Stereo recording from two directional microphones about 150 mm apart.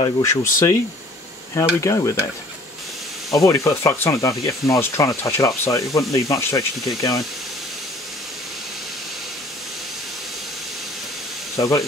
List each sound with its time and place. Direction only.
0.2 s speech: 20° left (ahead or behind)
1.8 s speech: 20° left (ahead or behind)
3.3 s speech: 20° left (ahead or behind)
11.5 s speech: 20° left (ahead or behind)